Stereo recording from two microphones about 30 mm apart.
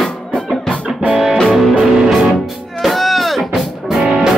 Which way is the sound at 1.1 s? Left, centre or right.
Centre.